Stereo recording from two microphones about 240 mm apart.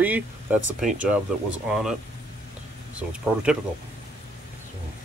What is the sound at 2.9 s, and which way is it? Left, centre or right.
Speech, centre.